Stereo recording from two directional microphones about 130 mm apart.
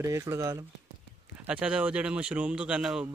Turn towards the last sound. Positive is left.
turn(degrees=-5)  # may be behind; listen again after turning